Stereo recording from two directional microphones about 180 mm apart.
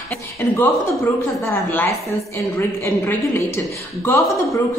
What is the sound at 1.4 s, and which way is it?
A woman's voice, 15° left (ahead or behind).